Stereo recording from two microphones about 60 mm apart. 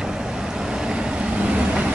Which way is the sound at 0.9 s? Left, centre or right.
Centre.